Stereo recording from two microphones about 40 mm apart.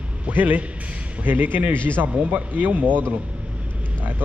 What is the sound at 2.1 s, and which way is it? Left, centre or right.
Speech, right.